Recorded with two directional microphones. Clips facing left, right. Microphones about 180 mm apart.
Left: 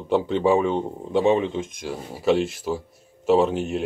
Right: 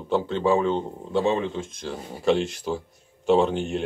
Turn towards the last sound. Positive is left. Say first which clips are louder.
# left 1 dB
turn(degrees=5)  # may be behind; listen again after turning